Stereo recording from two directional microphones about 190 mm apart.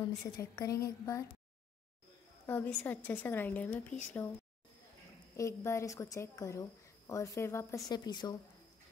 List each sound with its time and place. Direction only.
0.4 s speech: 15° left (ahead or behind)
2.4 s speech: 10° left (ahead or behind)
5.3 s speech: 15° left (ahead or behind)